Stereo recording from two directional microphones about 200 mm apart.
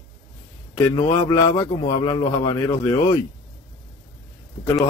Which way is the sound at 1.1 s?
15° left (ahead or behind).